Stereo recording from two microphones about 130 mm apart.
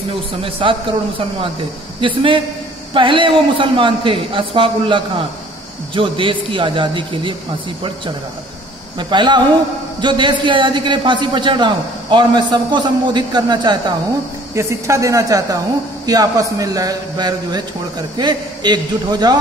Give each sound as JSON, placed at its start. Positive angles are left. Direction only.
{"t": 0.4, "sound": "a man's voice", "side_deg": -40}
{"t": 8.9, "sound": "a man's voice", "side_deg": -35}
{"t": 14.5, "sound": "a woman's voice", "side_deg": -25}